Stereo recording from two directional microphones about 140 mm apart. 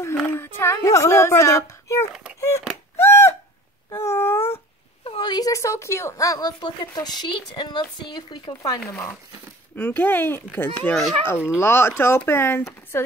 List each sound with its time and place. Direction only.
0.3 s a woman's voice: 15° left (ahead or behind)
2.1 s speech: 5° right (ahead or behind)
3.0 s a sound: 20° left (ahead or behind)
5.0 s a woman's voice: 35° left (ahead or behind); by 13.0 s 20° left (ahead or behind)